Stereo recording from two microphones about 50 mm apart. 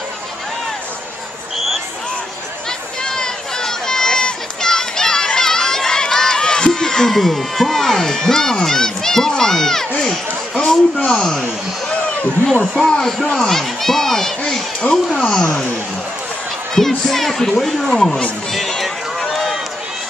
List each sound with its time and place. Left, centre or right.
3.0 s run: centre
11.1 s speech: centre
12.7 s speech: centre
16.7 s speech: centre
18.8 s run: centre